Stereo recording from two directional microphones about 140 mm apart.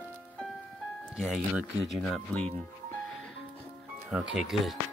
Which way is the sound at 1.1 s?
Centre (ahead or behind).